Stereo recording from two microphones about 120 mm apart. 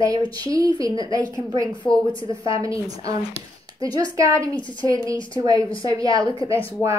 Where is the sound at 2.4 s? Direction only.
30° right (ahead or behind).